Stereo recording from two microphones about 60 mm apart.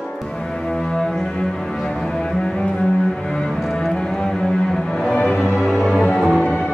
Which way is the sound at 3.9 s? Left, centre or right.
Centre.